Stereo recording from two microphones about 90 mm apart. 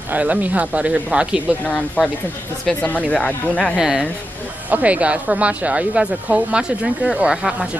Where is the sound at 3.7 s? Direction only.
5° right (ahead or behind).